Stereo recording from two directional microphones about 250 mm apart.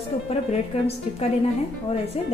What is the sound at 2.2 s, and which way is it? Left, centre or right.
Speech, left.